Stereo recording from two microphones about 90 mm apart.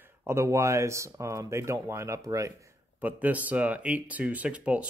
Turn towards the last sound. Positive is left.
turn(degrees=-15)  # may be behind; listen again after turning